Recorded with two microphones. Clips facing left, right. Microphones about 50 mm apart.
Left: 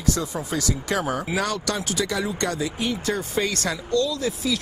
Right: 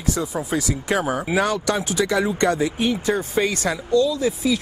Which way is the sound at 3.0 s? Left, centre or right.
Right.